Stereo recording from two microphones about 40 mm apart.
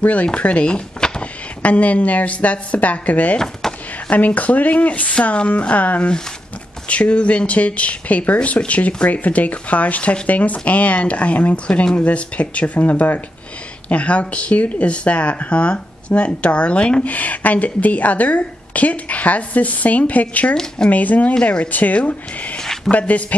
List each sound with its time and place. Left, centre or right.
0.0 s a woman's voice: left
0.7 s a sound: left
1.6 s a woman's voice: left
3.6 s a sound: centre
4.1 s a woman's voice: left
17.1 s a woman's voice: left